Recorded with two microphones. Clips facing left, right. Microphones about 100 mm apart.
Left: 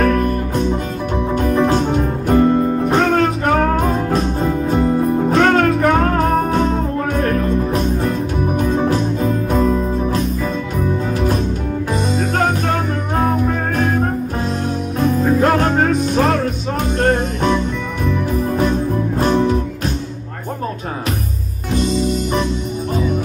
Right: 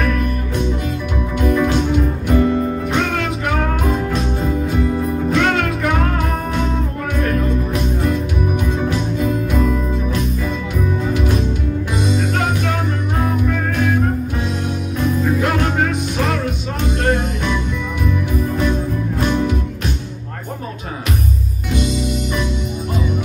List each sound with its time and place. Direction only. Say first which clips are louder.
0.0 s music: left 5 dB; 35° left (ahead or behind)
19.1 s music: left 3 dB; 35° left (ahead or behind)
21.7 s music: left 3 dB; 35° left (ahead or behind)